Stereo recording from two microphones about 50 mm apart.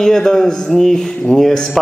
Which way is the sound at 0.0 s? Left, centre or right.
Centre.